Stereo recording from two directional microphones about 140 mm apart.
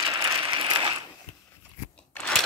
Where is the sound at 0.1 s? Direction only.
35° right (ahead or behind).